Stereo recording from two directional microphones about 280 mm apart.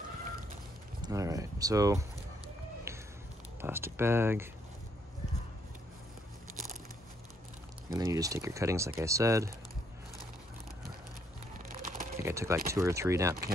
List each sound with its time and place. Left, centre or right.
1.0 s speech: centre
3.6 s speech: centre
7.9 s speech: centre
11.5 s a sound: right
12.2 s speech: centre